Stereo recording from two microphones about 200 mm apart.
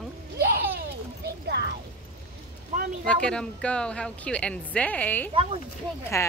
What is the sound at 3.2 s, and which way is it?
Speech, 5° left (ahead or behind).